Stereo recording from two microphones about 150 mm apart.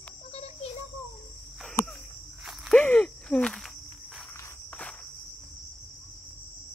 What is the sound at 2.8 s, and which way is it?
Cricket, 5° left (ahead or behind).